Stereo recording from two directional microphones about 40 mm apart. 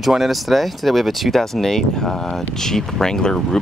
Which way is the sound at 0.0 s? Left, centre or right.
Centre.